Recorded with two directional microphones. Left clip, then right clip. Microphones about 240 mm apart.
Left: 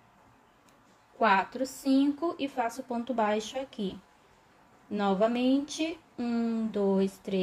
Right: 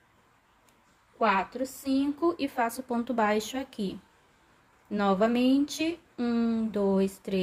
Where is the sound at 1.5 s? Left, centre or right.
Centre.